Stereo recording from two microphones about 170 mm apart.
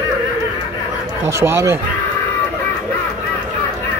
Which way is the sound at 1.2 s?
15° right (ahead or behind).